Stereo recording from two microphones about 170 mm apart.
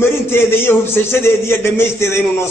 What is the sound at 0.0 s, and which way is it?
A man's voice, 15° left (ahead or behind).